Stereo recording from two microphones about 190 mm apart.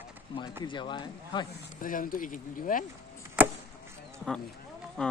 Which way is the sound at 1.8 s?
45° left (ahead or behind).